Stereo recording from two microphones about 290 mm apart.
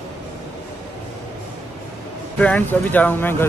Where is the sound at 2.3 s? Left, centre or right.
Centre.